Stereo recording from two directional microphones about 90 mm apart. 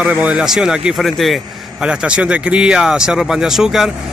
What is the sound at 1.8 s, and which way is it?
Speech, 10° right (ahead or behind).